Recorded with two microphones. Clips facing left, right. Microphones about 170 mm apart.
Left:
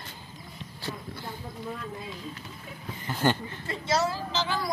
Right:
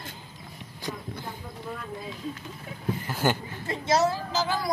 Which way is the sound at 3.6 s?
45° right (ahead or behind).